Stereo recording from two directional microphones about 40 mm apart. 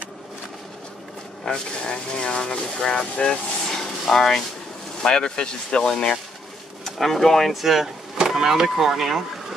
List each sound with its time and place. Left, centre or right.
1.4 s speech: centre
6.8 s speech: centre
7.5 s speech: centre